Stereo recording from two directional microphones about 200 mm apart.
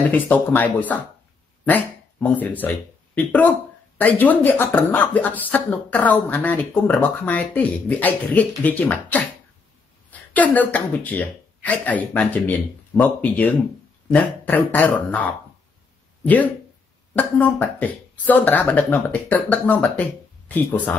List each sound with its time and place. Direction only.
0.1 s speech: 10° left (ahead or behind)
10.3 s speech: 10° left (ahead or behind)
17.1 s speech: 10° left (ahead or behind)